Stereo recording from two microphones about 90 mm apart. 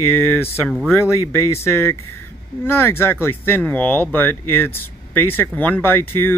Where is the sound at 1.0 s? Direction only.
30° left (ahead or behind).